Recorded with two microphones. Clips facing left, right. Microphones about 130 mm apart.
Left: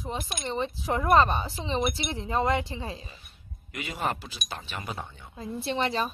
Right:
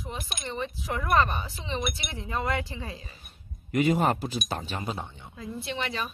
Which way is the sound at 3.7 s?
40° right (ahead or behind).